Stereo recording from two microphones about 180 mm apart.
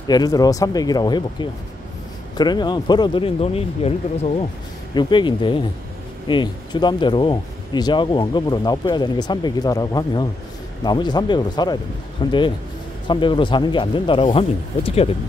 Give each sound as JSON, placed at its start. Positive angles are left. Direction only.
{"t": 0.1, "sound": "speech", "side_deg": 20}